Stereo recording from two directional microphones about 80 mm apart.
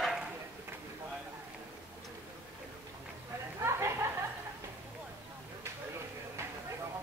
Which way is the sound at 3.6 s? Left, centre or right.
Right.